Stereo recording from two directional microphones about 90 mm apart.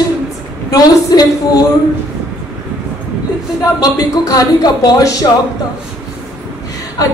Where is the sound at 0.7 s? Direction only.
45° left (ahead or behind).